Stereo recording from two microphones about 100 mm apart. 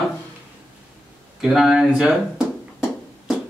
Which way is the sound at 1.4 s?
5° right (ahead or behind).